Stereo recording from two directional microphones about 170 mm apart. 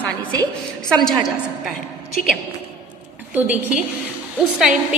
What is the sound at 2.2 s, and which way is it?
Speech, 50° left (ahead or behind).